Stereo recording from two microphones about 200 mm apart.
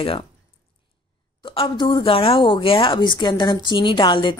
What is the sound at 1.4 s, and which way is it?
Speech, 25° left (ahead or behind).